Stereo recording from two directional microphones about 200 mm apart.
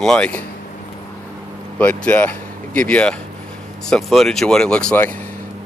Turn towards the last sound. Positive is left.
turn(degrees=5)  # may be behind; listen again after turning